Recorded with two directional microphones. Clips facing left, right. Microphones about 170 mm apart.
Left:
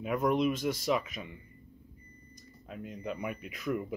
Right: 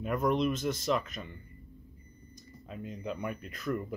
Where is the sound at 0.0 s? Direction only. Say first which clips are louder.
Left 1 dB; 5° left (ahead or behind).